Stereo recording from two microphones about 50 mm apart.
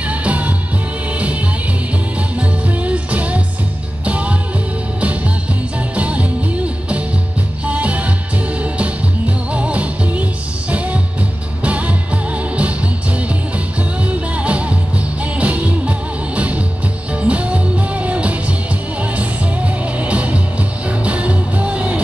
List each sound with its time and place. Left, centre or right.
0.1 s music: right
2.8 s music: right
5.9 s music: right
7.6 s music: right
9.5 s music: right
11.6 s music: right
14.0 s music: right